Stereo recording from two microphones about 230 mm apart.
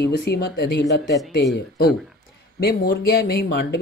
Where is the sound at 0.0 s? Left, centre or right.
Left.